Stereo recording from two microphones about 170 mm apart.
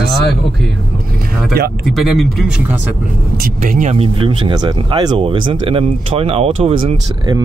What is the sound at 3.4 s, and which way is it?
Speech, 50° right (ahead or behind).